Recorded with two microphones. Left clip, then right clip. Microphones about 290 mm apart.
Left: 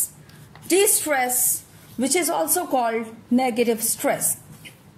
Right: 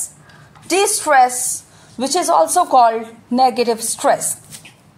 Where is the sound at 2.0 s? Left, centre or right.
Right.